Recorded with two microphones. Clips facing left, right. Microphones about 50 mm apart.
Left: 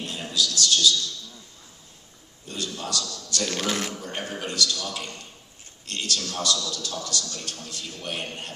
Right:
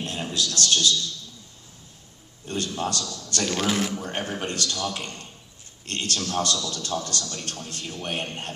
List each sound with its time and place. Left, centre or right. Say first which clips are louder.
0.0 s a man's voice: even; right
2.4 s a man's voice: right 5 dB; right
3.5 s a man's voice: right 5 dB; centre
4.0 s a man's voice: right 3 dB; right